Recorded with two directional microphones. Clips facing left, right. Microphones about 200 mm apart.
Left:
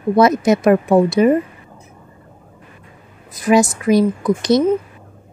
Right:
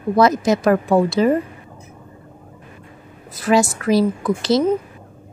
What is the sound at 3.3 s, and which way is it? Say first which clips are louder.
Speech: left 3 dB; 15° left (ahead or behind).